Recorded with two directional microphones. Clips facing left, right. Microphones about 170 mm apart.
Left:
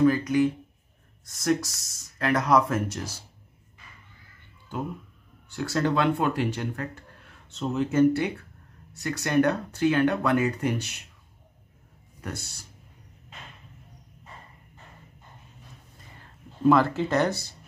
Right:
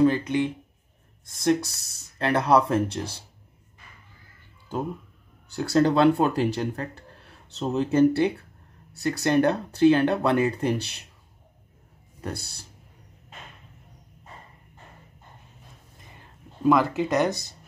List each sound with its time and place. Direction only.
0.0 s speech: 25° right (ahead or behind)
5.5 s speech: 35° right (ahead or behind)
12.2 s speech: 35° right (ahead or behind)
16.6 s speech: 15° right (ahead or behind)